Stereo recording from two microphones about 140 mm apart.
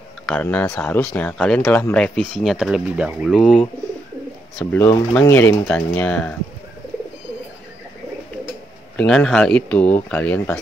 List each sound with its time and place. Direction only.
0.3 s speech: 10° left (ahead or behind)
4.6 s speech: 10° left (ahead or behind)
8.9 s speech: 5° left (ahead or behind)